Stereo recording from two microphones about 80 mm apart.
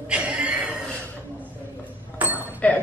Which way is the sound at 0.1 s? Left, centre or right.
Centre.